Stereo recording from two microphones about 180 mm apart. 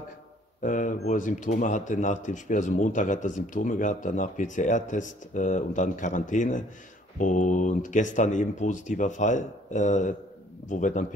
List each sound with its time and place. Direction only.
0.6 s speech: 45° left (ahead or behind)